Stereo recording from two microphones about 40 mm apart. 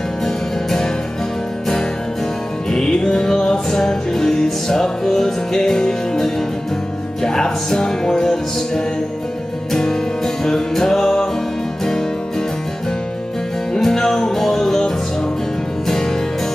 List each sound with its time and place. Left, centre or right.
2.7 s music: centre
10.4 s music: centre
13.7 s music: centre